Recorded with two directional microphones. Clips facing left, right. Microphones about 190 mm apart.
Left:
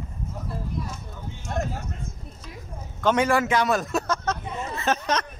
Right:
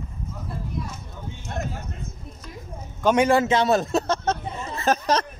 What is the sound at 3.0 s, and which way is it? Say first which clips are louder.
Speech: right 3 dB; 15° right (ahead or behind).